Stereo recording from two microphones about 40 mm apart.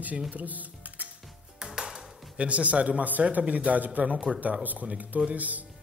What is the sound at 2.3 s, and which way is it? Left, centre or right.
A man's voice, right.